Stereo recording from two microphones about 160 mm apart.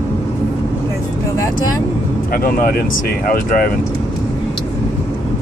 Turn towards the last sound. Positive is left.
turn(degrees=65)  # may be behind; listen again after turning